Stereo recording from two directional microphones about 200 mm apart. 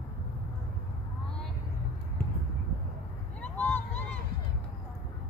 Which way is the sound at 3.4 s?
5° left (ahead or behind).